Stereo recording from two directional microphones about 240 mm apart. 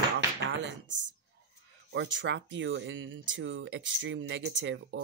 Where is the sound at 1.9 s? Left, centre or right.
Right.